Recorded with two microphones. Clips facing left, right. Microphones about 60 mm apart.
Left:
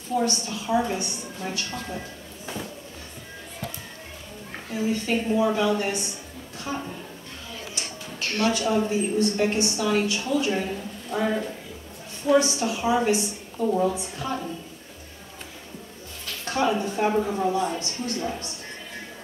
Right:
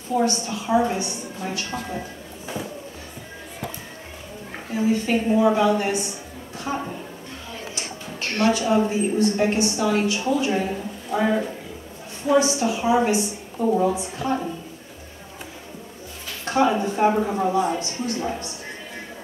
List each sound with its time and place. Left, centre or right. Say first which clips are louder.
0.1 s a woman's voice: right 3 dB; centre
5.0 s a woman's voice: right 3 dB; right
8.2 s a sound: right 2 dB; right
8.5 s a woman's voice: right 4 dB; centre
16.4 s a woman's voice: right 4 dB; centre